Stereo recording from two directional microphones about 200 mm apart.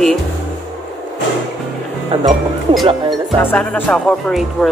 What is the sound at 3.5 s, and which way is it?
Speech, 5° left (ahead or behind).